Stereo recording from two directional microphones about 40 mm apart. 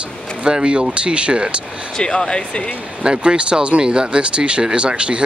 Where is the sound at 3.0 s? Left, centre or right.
Right.